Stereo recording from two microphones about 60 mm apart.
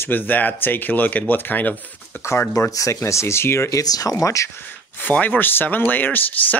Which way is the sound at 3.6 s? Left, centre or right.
Left.